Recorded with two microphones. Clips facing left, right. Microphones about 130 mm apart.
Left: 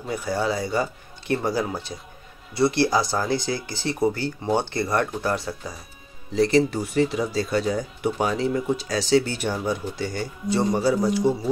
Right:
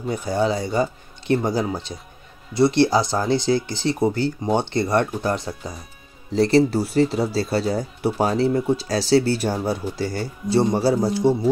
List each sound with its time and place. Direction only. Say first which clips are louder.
0.1 s speech: right 3 dB; 20° right (ahead or behind)
6.3 s speech: right 3 dB; 35° right (ahead or behind)